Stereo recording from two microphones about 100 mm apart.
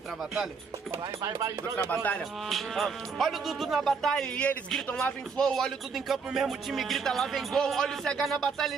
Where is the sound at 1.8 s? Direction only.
15° left (ahead or behind).